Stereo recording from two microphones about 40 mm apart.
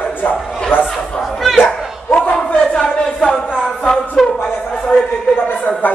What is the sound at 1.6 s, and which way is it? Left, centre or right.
Bow-wow, left.